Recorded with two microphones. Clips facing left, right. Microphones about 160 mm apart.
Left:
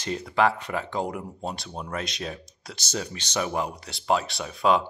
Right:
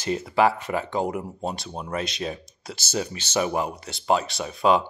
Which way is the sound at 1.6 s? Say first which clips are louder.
Right 2 dB; 15° right (ahead or behind).